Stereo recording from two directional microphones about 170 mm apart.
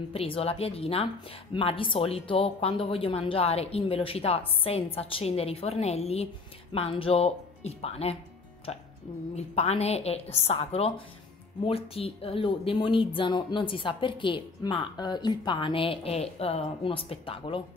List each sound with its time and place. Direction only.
0.1 s speech: 35° left (ahead or behind)
9.3 s speech: 40° left (ahead or behind)